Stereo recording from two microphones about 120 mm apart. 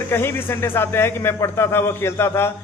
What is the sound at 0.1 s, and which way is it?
A man's voice, 20° left (ahead or behind).